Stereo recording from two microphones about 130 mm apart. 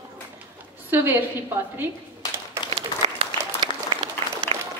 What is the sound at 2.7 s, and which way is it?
Applause, 40° right (ahead or behind).